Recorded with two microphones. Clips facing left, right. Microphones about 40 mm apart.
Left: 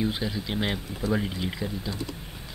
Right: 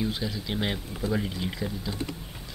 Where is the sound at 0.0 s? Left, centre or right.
Centre.